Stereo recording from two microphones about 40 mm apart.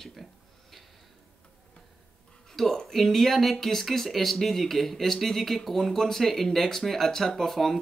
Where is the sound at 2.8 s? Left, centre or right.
Centre.